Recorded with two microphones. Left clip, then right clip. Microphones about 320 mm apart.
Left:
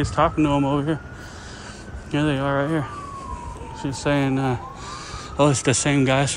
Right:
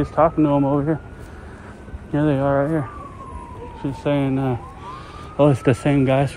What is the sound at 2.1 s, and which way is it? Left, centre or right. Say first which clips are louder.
Speech: right 3 dB; centre.